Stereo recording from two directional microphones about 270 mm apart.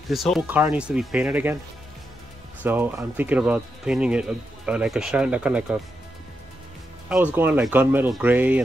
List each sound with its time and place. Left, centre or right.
0.1 s speech: centre
2.6 s speech: centre
7.3 s speech: centre